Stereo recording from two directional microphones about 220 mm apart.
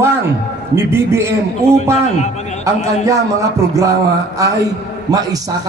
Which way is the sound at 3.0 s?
15° right (ahead or behind).